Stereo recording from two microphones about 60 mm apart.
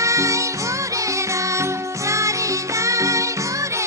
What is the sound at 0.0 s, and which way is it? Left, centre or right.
Music, right.